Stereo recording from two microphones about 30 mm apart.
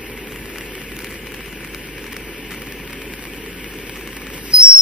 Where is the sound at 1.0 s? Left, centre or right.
Centre.